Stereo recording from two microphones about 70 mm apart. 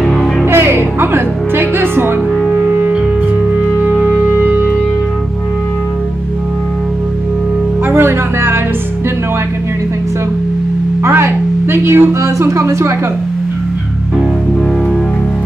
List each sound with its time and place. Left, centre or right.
0.0 s music: centre
0.5 s music: right
7.9 s music: right
11.1 s a sound: right